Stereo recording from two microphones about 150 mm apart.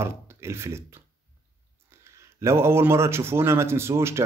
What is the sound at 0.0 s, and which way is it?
Speech, 15° right (ahead or behind).